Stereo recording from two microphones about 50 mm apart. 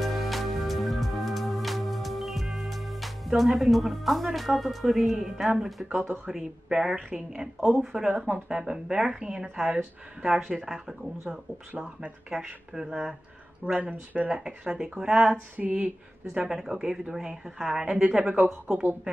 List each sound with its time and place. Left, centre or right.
0.0 s music: centre
3.4 s a woman's voice: centre
10.6 s speech: centre
11.8 s a woman's voice: centre
13.7 s speech: right
15.5 s speech: right
16.4 s a woman's voice: centre; by 18.5 s right